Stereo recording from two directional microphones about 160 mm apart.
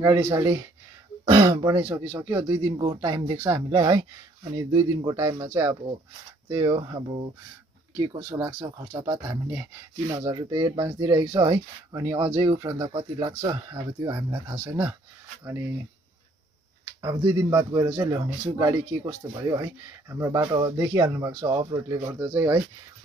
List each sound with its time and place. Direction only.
0.3 s speech: 20° right (ahead or behind)
8.0 s speech: 20° right (ahead or behind)
17.0 s speech: 20° right (ahead or behind)